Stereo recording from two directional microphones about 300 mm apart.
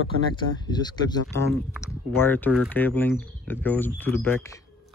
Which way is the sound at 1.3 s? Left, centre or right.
Centre.